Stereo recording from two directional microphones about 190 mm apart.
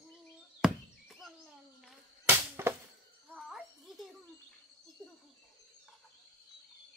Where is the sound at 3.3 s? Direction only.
Centre (ahead or behind).